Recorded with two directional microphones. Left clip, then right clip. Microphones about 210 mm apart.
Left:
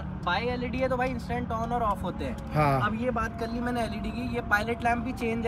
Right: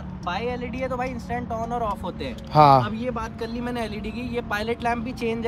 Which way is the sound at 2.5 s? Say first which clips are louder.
Right 12 dB; 20° right (ahead or behind).